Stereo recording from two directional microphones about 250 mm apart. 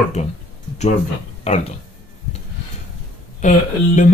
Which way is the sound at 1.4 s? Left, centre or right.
Left.